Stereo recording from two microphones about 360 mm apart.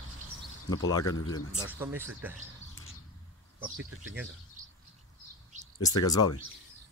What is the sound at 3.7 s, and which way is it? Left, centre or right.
Speech, right.